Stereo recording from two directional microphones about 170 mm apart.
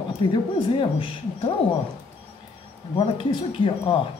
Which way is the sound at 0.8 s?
30° left (ahead or behind).